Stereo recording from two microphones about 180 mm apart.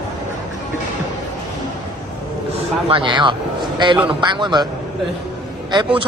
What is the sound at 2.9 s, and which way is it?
Speech, 25° right (ahead or behind).